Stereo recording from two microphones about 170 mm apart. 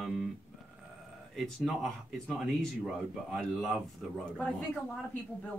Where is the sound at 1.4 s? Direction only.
Centre (ahead or behind).